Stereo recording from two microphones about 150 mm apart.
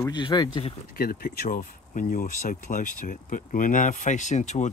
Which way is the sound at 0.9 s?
85° left.